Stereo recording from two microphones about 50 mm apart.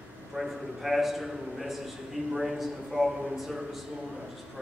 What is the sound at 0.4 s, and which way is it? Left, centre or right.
A man's voice, centre.